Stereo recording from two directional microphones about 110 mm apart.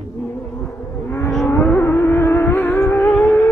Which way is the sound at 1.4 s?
20° left (ahead or behind).